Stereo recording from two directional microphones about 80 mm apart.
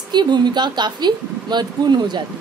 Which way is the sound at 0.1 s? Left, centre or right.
Right.